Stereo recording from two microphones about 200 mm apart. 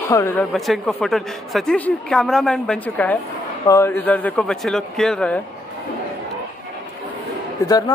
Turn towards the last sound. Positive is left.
turn(degrees=20)  # may be behind; listen again after turning